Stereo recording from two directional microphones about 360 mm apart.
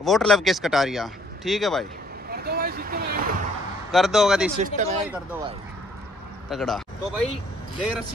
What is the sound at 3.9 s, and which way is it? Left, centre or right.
Speech, centre.